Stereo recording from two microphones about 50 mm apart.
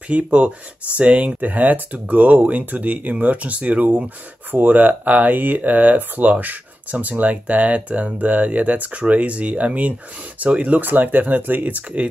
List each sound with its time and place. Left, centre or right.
0.1 s speech: right